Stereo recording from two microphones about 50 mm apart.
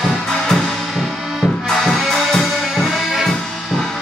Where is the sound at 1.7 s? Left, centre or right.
Centre.